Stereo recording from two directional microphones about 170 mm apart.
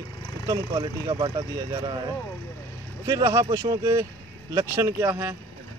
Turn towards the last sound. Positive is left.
turn(degrees=-15)  # may be behind; listen again after turning